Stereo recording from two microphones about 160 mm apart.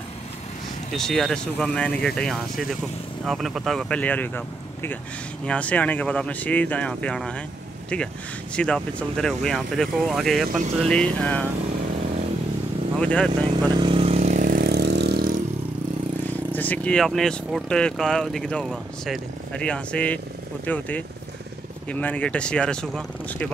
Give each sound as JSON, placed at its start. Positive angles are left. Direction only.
{"t": 0.9, "sound": "speech", "side_deg": 0}
{"t": 5.5, "sound": "speech", "side_deg": 10}
{"t": 8.5, "sound": "speech", "side_deg": 5}
{"t": 13.0, "sound": "speech", "side_deg": 5}
{"t": 13.7, "sound": "vehicle", "side_deg": -30}
{"t": 14.4, "sound": "vehicle", "side_deg": -65}
{"t": 16.3, "sound": "speech", "side_deg": 10}